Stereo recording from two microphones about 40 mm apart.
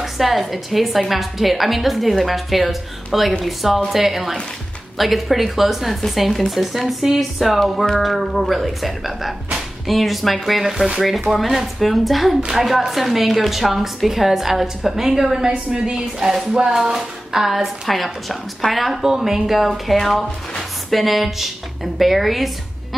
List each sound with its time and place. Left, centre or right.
0.0 s a woman's voice: centre